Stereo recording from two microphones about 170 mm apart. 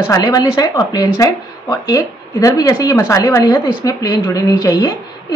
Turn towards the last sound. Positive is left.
turn(degrees=20)  # may be behind; listen again after turning